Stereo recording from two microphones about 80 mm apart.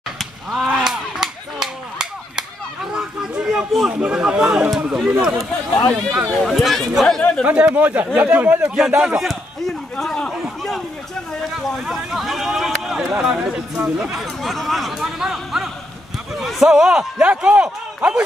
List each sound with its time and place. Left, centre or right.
0.2 s whip: centre
3.9 s speech: centre
7.4 s speech: centre
8.7 s a man's voice: centre
10.3 s a sound: centre
11.5 s speech: centre